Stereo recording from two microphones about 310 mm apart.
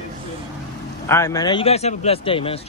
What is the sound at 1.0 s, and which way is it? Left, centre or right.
Speech, centre.